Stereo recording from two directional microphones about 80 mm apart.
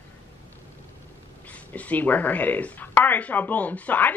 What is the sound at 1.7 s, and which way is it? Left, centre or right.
Speech, centre.